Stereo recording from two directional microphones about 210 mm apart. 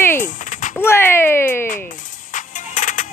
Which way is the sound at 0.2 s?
35° left (ahead or behind).